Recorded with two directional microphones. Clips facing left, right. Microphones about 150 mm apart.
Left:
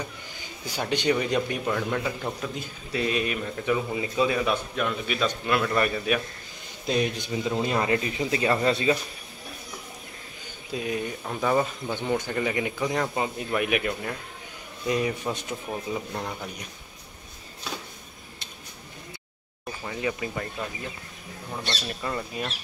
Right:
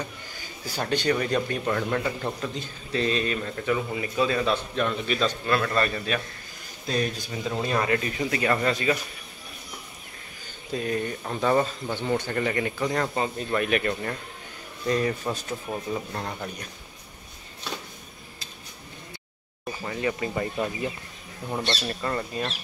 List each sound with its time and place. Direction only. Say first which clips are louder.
0.7 s a man's voice: even; 15° left (ahead or behind)
1.7 s a man's voice: right 1 dB; 5° left (ahead or behind); by 8.9 s 25° left (ahead or behind)
10.7 s a man's voice: right 2 dB; 10° left (ahead or behind)
19.8 s speech: right 2 dB; 5° left (ahead or behind)
21.8 s speech: right 2 dB; 5° left (ahead or behind)